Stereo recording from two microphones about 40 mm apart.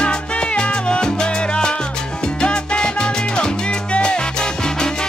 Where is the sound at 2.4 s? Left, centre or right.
Left.